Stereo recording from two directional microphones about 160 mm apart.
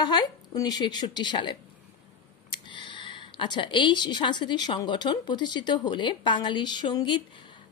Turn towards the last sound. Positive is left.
turn(degrees=30)  # may be behind; listen again after turning